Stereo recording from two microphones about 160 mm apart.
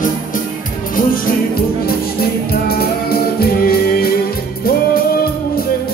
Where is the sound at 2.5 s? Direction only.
75° left (ahead or behind).